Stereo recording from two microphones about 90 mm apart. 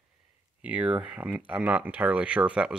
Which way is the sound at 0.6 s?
15° right (ahead or behind).